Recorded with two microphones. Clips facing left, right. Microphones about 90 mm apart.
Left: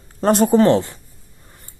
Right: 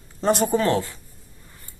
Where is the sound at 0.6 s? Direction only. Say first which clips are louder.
Left 6 dB; 25° left (ahead or behind).